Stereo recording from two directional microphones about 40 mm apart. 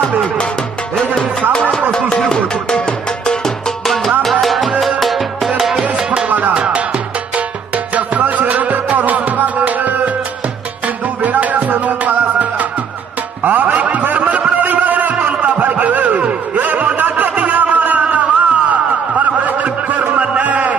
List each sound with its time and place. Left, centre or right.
2.2 s music: centre
6.0 s music: right
6.5 s music: right
7.3 s music: right
11.2 s music: right
14.0 s snicker: right
14.6 s music: right
18.0 s snicker: right